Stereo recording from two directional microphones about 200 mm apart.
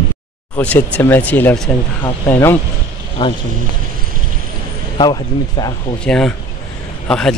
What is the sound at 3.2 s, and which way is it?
Speech, 25° left (ahead or behind).